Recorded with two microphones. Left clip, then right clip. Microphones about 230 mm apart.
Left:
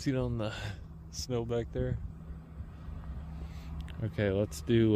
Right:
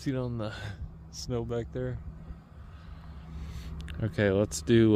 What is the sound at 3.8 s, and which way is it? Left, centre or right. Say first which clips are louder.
Speech: right 5 dB; centre.